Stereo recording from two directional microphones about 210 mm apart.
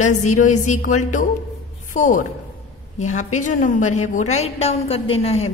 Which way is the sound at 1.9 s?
40° left (ahead or behind).